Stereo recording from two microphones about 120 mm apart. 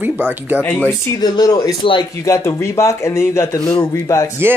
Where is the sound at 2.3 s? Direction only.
25° left (ahead or behind).